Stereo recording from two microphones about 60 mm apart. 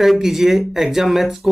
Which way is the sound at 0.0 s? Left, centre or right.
Centre.